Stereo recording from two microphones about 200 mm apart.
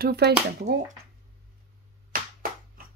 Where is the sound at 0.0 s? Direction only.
55° right (ahead or behind).